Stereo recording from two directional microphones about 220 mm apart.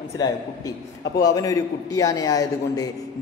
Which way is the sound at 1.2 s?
15° left (ahead or behind).